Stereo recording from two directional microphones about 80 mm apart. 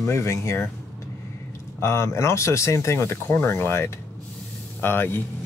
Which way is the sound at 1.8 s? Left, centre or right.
Left.